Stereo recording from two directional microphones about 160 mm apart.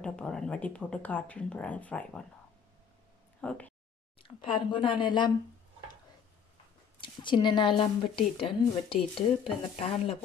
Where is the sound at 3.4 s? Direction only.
10° left (ahead or behind).